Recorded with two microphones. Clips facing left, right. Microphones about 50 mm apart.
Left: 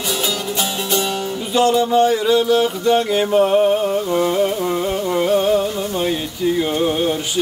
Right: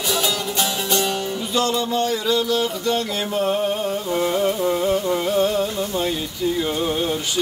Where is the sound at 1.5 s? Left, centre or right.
Centre.